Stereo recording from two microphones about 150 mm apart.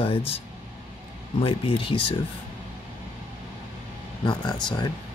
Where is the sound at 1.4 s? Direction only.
35° left (ahead or behind).